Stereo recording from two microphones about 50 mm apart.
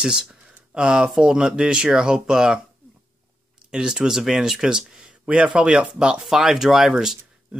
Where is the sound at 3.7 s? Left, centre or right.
Centre.